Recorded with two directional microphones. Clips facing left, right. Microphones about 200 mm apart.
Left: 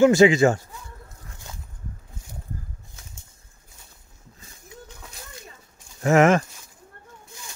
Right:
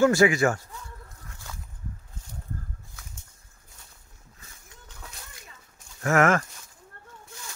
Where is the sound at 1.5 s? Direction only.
20° left (ahead or behind).